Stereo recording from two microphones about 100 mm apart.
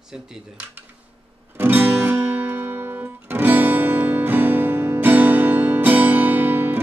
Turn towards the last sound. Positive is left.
turn(degrees=-20)  # may be behind; listen again after turning